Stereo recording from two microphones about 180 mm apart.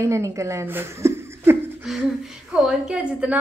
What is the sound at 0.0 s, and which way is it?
Speech, 15° right (ahead or behind).